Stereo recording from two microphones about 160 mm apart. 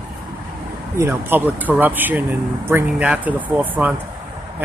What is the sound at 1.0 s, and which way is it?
Speech, 10° right (ahead or behind).